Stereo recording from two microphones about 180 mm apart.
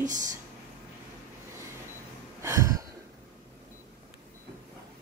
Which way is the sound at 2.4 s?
15° right (ahead or behind).